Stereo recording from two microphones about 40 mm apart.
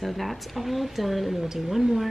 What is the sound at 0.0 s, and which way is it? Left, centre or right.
Speech, centre.